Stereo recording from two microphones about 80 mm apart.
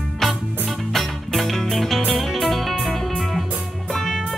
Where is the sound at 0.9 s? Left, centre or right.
Centre.